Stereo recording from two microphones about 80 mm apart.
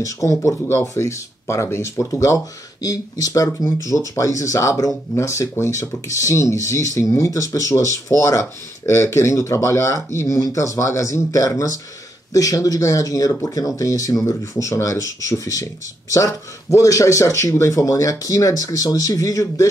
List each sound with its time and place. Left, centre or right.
0.0 s speech: left
0.7 s speech: left